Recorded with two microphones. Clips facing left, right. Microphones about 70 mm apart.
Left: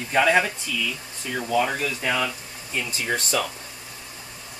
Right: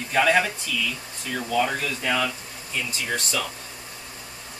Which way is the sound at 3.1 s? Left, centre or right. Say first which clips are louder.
Left 4 dB; left.